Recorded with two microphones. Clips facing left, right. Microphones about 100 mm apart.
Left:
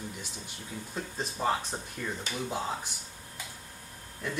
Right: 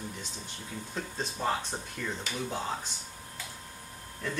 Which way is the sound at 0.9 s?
5° left (ahead or behind).